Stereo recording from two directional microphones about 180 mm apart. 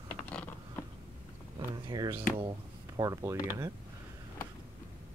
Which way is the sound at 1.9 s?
25° right (ahead or behind).